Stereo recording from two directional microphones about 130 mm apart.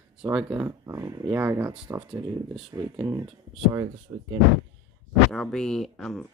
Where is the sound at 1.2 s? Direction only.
15° right (ahead or behind).